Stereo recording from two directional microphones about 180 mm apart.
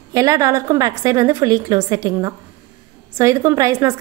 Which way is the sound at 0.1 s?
20° right (ahead or behind).